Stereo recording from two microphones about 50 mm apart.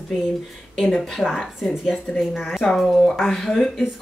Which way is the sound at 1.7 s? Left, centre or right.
Centre.